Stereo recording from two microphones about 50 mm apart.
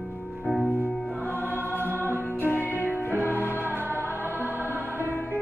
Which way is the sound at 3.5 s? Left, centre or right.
Right.